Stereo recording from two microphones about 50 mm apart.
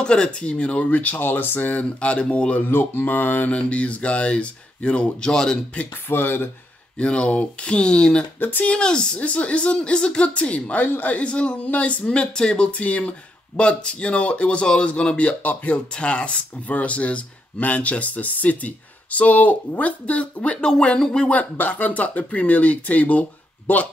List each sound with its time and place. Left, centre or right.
0.0 s speech: centre
2.7 s mantra: left
3.5 s speech: left
5.3 s speech: centre
6.0 s mantra: left
7.0 s speech: left
8.4 s speech: left
8.7 s speech: centre
21.3 s speech: left